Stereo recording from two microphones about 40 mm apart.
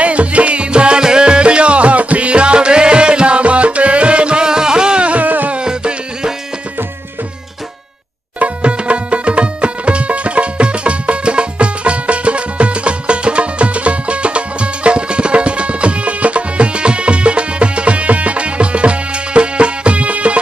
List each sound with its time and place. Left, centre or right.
0.0 s music: right
5.2 s music: right
5.6 s music: right
8.4 s music: right